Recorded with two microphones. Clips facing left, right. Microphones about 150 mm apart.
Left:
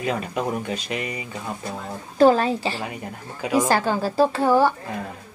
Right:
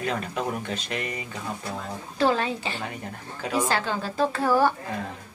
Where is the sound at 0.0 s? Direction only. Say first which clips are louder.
Left 3 dB; 5° left (ahead or behind).